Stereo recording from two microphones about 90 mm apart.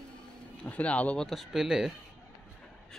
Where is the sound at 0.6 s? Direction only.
15° left (ahead or behind).